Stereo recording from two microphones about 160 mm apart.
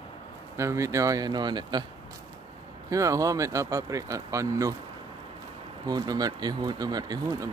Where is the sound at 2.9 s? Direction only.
20° right (ahead or behind).